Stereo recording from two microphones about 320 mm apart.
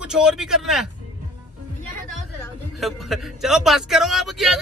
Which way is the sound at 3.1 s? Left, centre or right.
Centre.